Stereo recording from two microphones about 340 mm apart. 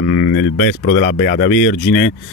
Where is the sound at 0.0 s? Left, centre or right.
Left.